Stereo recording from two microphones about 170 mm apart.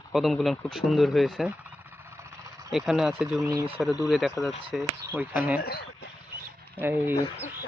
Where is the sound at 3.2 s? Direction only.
5° right (ahead or behind).